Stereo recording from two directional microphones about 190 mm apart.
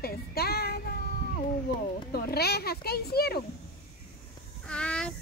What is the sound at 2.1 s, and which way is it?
A child's voice, 55° left (ahead or behind).